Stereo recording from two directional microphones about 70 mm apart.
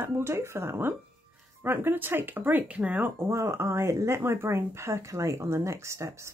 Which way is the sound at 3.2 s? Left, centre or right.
Right.